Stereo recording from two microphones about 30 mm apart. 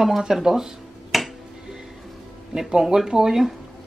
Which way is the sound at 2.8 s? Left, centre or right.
Centre.